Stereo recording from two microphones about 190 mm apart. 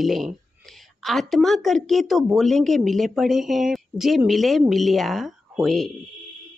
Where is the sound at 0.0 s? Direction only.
Centre (ahead or behind).